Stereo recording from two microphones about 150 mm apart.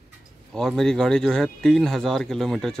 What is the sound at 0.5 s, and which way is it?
Speech, 5° left (ahead or behind).